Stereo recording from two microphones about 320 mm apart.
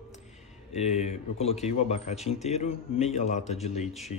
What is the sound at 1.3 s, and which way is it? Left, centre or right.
A man's voice, centre.